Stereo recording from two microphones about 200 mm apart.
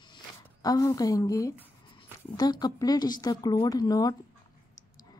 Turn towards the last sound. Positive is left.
turn(degrees=20)  # may be behind; listen again after turning